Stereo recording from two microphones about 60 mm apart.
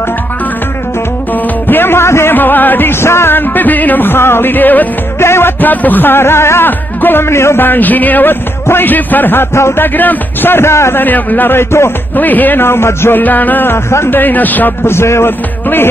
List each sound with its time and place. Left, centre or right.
1.7 s music: left
2.3 s music: left
3.3 s music: left
5.2 s a man's voice: left
5.6 s music: left
6.6 s music: left
7.6 s music: left
9.9 s music: left
11.0 s music: left
13.2 s speech: left
13.8 s a man's voice: left
14.1 s speech: left
14.9 s a man's voice: left